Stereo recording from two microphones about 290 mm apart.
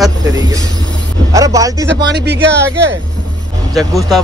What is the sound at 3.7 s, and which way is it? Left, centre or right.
Speech, centre.